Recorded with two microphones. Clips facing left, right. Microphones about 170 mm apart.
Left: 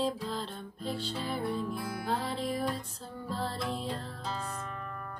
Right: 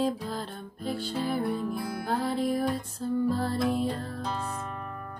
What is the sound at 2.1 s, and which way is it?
Music, 45° right (ahead or behind).